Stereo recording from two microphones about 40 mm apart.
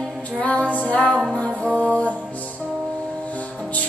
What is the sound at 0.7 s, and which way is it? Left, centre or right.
Music, left.